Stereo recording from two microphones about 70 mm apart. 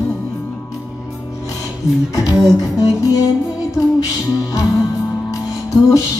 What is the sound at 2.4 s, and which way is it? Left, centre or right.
Music, left.